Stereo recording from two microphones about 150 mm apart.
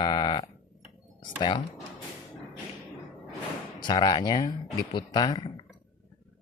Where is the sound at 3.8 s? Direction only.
30° left (ahead or behind).